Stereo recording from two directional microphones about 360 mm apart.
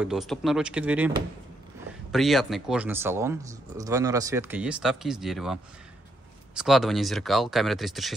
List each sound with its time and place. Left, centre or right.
0.0 s speech: centre